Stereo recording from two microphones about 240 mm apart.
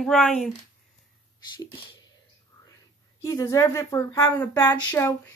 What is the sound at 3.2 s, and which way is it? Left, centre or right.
Speech, centre.